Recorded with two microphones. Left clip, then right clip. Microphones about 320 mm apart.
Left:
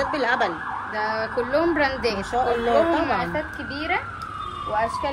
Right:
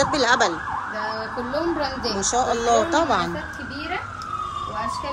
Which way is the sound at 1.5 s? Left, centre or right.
Left.